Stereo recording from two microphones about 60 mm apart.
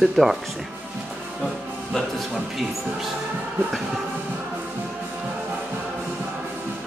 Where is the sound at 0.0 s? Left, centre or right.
Centre.